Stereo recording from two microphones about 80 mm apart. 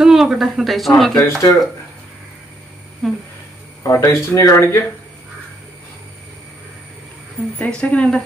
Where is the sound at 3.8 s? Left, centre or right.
Left.